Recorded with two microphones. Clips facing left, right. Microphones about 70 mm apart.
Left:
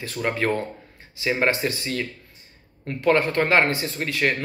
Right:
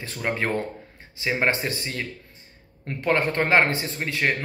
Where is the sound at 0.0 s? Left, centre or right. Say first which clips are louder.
Left 2 dB; right.